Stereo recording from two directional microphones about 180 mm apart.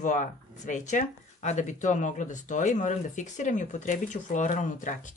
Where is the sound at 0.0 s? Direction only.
45° left (ahead or behind).